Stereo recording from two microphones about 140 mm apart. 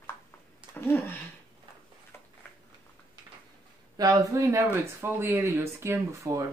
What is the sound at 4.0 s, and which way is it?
Speech, 25° right (ahead or behind).